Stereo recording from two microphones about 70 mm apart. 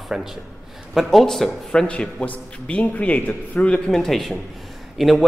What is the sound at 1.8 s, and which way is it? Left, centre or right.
A man's voice, centre.